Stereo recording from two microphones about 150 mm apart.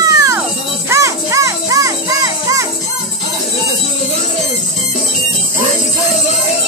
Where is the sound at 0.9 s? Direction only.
20° right (ahead or behind).